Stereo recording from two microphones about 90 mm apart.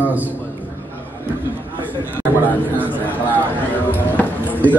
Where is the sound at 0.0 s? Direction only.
20° right (ahead or behind).